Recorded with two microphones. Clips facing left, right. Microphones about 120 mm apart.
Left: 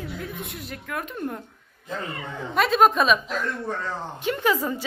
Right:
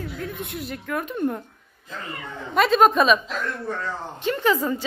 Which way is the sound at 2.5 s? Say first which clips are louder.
Right 2 dB; centre (ahead or behind).